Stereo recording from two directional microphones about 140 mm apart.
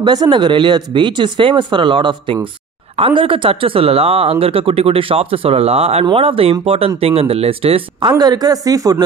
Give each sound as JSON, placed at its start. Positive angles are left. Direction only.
{"t": 0.0, "sound": "speech", "side_deg": -30}
{"t": 8.2, "sound": "speech", "side_deg": -30}